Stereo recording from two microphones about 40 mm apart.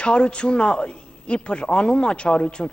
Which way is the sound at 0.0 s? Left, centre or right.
Left.